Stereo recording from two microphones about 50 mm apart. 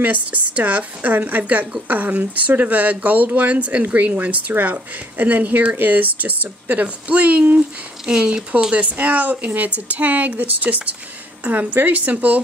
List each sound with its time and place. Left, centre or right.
0.0 s speech: right
8.1 s speech: centre
8.8 s speech: right